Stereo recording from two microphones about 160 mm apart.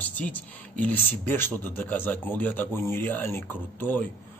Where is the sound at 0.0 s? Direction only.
10° left (ahead or behind).